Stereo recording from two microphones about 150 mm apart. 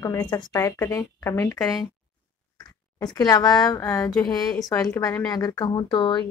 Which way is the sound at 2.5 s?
25° left (ahead or behind).